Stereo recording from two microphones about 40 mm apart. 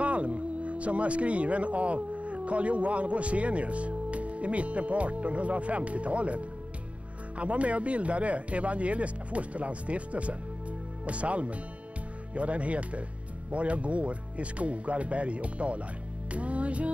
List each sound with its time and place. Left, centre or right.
0.0 s speech: right